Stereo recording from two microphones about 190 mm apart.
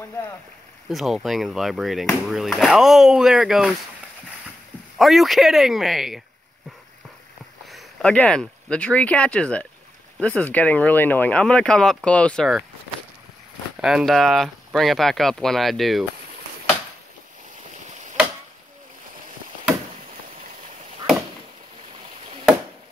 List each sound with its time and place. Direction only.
0.8 s speech: centre (ahead or behind)
4.9 s speech: centre (ahead or behind)
7.6 s speech: 5° left (ahead or behind)
13.7 s speech: 5° right (ahead or behind)